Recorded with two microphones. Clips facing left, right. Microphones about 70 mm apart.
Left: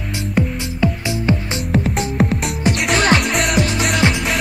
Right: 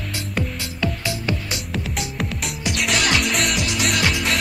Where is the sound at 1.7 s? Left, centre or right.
Left.